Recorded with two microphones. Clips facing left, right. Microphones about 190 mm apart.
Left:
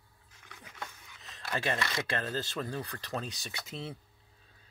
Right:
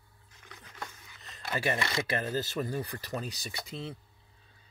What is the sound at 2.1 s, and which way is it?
Speech, 10° right (ahead or behind).